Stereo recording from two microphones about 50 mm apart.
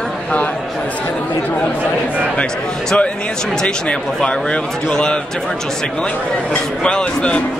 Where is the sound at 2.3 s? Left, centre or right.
Centre.